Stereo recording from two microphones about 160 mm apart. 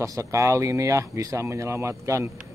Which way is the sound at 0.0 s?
20° right (ahead or behind).